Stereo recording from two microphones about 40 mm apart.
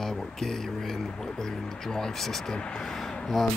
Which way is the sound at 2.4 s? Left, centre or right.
Left.